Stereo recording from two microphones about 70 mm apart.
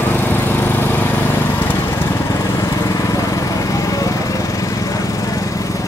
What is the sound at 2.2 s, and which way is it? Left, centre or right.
Lawn mower, left.